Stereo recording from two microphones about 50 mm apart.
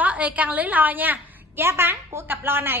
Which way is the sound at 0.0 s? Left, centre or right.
Right.